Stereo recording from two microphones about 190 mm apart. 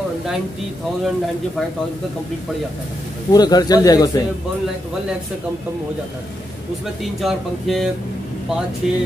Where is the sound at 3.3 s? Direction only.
20° left (ahead or behind).